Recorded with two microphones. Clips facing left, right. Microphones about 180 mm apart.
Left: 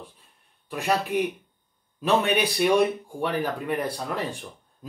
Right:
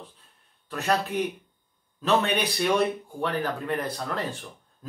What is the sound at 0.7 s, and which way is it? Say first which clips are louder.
Speech: left 1 dB; 10° left (ahead or behind).